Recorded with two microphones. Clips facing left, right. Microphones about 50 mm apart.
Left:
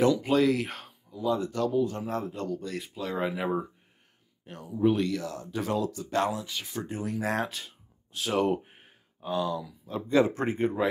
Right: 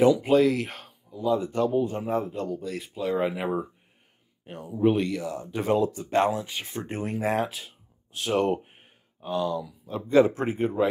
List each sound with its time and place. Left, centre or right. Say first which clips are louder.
0.0 s speech: right 4 dB; centre
1.5 s speech: right 2 dB; right
4.5 s speech: right 4 dB; right
4.9 s speech: right 2 dB; centre; by 7.2 s right
7.2 s speech: right 6 dB; centre
10.0 s speech: right 4 dB; right
10.3 s speech: right 1 dB; centre